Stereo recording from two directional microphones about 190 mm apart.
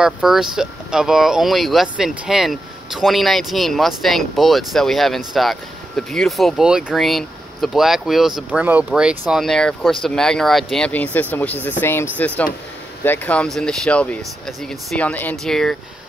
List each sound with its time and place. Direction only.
0.0 s speech: centre (ahead or behind)